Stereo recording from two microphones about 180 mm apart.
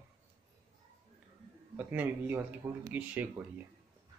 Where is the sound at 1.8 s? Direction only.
10° right (ahead or behind).